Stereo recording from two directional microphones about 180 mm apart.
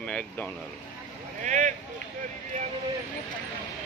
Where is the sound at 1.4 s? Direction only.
45° right (ahead or behind).